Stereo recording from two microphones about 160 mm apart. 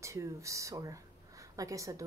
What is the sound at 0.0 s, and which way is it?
Speech, 20° right (ahead or behind).